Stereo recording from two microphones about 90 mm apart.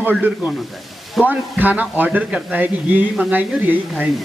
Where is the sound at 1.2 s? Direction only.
20° right (ahead or behind).